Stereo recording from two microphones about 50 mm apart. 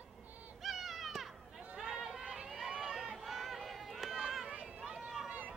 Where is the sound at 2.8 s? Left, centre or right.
Centre.